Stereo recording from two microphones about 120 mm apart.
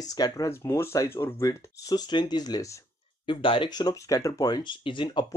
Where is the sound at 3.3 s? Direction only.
45° left (ahead or behind).